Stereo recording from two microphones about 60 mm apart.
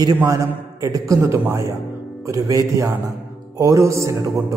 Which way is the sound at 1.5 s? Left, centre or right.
Right.